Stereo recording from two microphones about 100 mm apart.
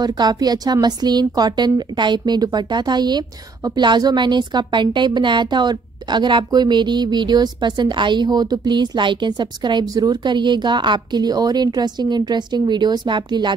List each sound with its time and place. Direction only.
0.0 s speech: 40° right (ahead or behind)